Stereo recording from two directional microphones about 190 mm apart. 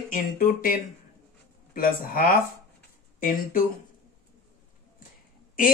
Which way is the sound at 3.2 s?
45° left (ahead or behind).